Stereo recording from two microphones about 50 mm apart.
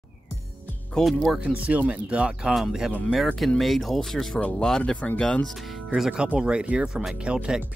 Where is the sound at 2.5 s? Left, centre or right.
Centre.